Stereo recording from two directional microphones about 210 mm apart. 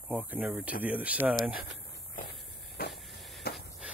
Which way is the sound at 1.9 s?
45° left (ahead or behind).